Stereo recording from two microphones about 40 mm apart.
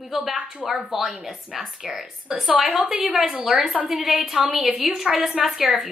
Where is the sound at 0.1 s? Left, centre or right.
Centre.